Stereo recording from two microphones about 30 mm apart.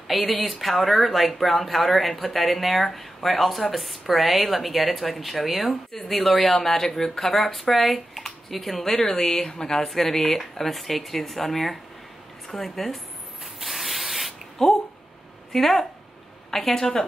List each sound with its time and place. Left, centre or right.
0.1 s speech: centre
13.6 s spray: centre
14.6 s a woman's voice: centre